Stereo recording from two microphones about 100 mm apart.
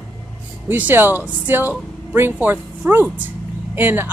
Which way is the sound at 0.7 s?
20° right (ahead or behind).